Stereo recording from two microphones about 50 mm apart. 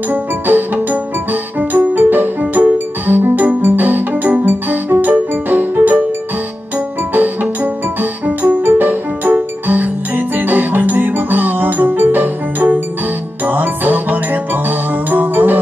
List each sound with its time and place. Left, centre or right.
0.1 s music: right
7.2 s music: right